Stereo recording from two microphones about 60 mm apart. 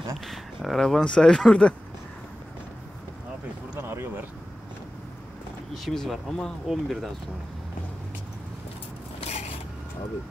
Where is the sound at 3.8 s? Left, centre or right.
Right.